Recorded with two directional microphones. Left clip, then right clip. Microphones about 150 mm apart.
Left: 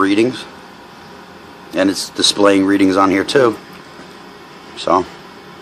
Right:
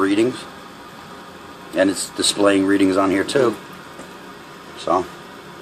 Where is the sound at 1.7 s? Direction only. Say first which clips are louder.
Left 2 dB; 50° left (ahead or behind).